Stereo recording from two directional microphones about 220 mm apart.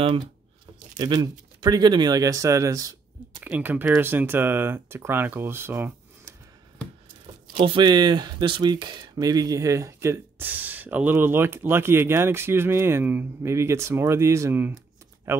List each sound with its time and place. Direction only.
0.9 s speech: 20° right (ahead or behind)
7.6 s speech: 20° right (ahead or behind)